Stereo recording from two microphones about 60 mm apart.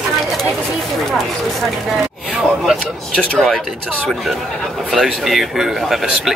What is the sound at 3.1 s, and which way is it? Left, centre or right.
Speech, centre.